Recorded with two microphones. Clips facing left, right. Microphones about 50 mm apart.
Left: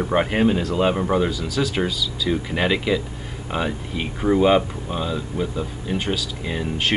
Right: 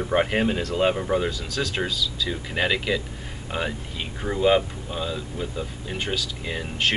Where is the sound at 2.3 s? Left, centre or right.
Centre.